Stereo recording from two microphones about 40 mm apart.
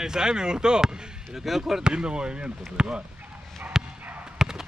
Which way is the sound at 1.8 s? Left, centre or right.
Right.